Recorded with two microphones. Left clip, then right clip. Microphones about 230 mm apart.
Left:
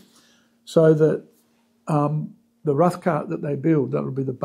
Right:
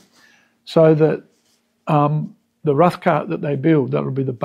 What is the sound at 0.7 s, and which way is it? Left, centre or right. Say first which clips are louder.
Speech: right 3 dB; right.